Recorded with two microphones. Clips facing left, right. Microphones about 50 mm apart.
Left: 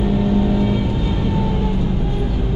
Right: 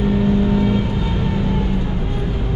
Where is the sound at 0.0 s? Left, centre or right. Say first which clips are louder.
Right 1 dB; centre.